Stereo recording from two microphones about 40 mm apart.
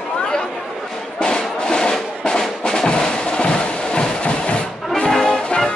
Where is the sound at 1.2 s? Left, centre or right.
Left.